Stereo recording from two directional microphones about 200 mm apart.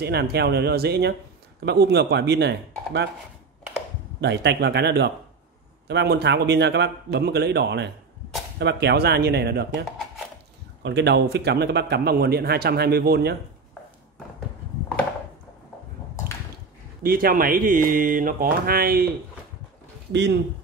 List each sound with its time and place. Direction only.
0.0 s a man's voice: 55° right (ahead or behind)
4.2 s a man's voice: 55° right (ahead or behind)
17.0 s speech: 45° right (ahead or behind)
20.1 s speech: 60° right (ahead or behind)